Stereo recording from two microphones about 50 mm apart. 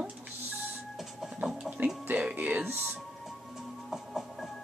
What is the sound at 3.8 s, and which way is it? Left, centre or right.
Music, centre.